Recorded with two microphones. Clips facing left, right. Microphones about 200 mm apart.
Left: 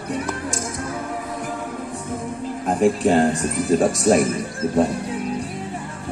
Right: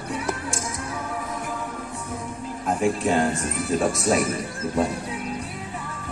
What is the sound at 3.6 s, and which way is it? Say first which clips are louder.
Speech: left 5 dB; 35° left (ahead or behind).